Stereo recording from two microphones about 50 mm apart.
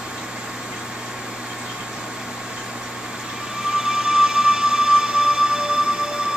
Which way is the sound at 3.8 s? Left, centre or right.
Centre.